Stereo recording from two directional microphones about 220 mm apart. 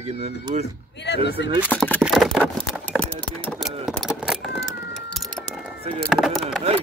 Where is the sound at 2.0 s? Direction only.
Centre (ahead or behind).